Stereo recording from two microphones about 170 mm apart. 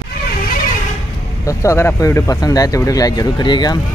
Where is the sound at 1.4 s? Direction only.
15° left (ahead or behind).